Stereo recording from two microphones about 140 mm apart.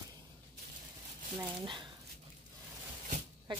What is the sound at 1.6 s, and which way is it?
Speech, 35° right (ahead or behind).